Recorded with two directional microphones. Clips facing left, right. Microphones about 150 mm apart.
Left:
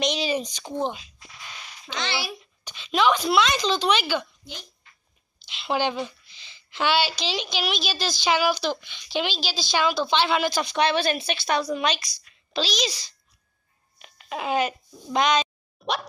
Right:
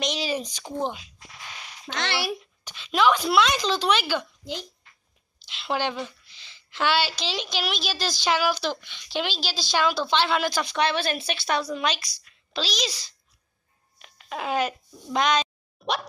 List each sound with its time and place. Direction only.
0.0 s speech: centre (ahead or behind)
2.0 s speech: 65° right (ahead or behind)
2.6 s a woman's voice: centre (ahead or behind)
5.5 s a woman's voice: centre (ahead or behind)
8.3 s a woman's voice: 10° left (ahead or behind)
15.1 s a sound: centre (ahead or behind)